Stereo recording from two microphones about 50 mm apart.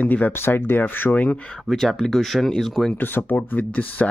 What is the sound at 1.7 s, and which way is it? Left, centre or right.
Speech, centre.